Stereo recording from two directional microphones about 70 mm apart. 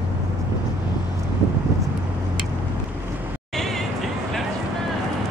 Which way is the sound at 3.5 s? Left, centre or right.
Centre.